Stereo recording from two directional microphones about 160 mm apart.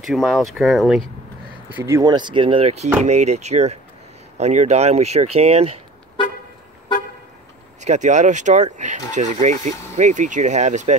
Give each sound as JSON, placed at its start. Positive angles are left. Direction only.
{"t": 0.0, "sound": "speech", "side_deg": 0}
{"t": 1.8, "sound": "speech", "side_deg": -20}
{"t": 7.8, "sound": "speech", "side_deg": -50}